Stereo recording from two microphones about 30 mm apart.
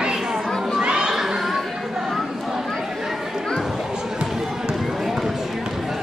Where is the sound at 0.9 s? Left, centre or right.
Right.